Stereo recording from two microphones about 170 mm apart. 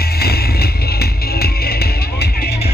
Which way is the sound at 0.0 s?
65° left (ahead or behind).